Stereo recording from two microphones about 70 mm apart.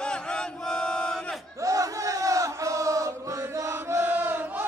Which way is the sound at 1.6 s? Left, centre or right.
Right.